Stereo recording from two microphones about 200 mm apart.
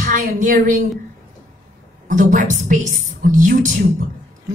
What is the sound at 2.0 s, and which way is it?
A woman's voice, 40° right (ahead or behind).